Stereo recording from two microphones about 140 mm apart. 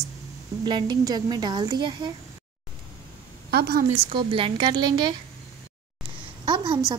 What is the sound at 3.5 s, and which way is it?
Speech, 90° right.